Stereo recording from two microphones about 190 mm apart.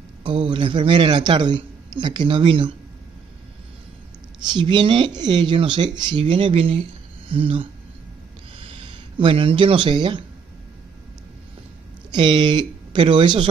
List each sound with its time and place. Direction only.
0.2 s speech: 25° right (ahead or behind)
4.4 s speech: 25° right (ahead or behind)
9.2 s speech: 30° right (ahead or behind)
12.1 s speech: 25° right (ahead or behind)